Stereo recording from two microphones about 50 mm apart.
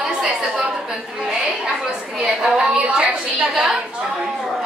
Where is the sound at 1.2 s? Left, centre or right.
Centre.